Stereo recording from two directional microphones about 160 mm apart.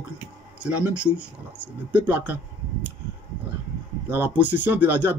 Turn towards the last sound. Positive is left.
turn(degrees=-10)  # may be behind; listen again after turning